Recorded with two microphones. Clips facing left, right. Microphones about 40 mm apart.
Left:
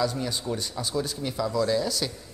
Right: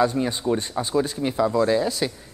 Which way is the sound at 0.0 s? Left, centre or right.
Right.